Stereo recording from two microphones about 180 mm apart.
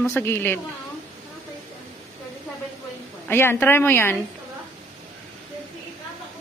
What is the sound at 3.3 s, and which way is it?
Speech, 10° left (ahead or behind).